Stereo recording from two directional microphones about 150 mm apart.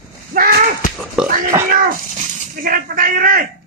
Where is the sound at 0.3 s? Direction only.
70° right (ahead or behind).